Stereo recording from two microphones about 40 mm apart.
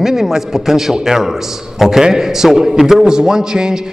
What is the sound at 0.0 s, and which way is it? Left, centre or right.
A man's voice, centre.